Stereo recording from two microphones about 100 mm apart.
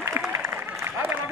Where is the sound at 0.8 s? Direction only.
20° right (ahead or behind).